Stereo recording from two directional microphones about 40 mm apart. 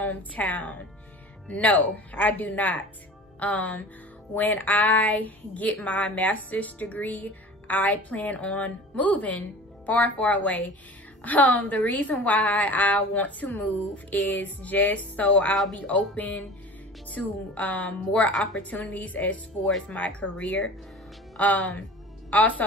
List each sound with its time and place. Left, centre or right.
0.1 s a woman's voice: left